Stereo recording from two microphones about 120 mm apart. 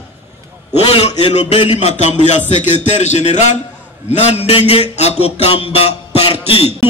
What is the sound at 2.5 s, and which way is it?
A man's voice, 85° left.